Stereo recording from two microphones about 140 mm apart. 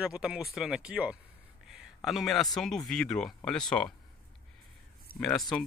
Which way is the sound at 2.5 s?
5° left (ahead or behind).